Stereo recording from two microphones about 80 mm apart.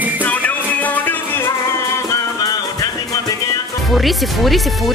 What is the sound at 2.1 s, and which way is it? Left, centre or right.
Music, left.